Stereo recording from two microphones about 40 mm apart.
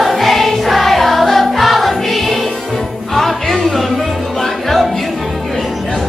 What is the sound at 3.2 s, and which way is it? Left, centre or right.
Music, centre.